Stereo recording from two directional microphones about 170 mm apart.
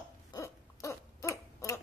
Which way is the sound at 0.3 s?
20° left (ahead or behind).